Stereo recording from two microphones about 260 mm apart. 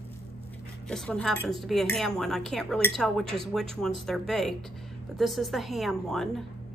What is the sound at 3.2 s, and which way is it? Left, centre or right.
Speech, right.